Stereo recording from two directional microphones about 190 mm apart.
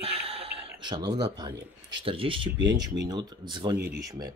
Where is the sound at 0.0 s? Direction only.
30° right (ahead or behind).